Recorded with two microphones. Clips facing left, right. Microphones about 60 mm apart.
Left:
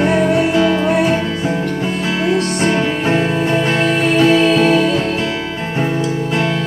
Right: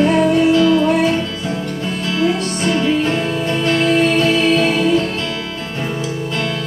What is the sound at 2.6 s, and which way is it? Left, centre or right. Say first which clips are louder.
Music: even; left.